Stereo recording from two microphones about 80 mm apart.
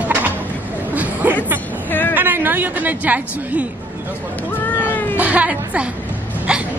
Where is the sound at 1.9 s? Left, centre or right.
Left.